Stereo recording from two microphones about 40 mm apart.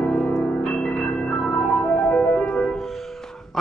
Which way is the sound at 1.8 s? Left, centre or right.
Left.